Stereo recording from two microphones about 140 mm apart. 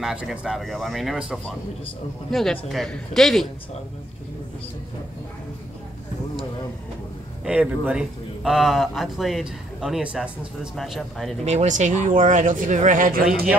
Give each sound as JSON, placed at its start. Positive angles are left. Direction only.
{"t": 0.0, "sound": "speech", "side_deg": -5}
{"t": 7.4, "sound": "speech", "side_deg": -10}
{"t": 11.4, "sound": "speech", "side_deg": -55}